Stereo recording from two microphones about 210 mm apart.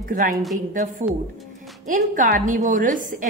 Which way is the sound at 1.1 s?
5° right (ahead or behind).